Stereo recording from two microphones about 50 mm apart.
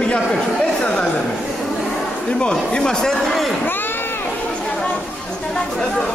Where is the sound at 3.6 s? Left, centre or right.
Left.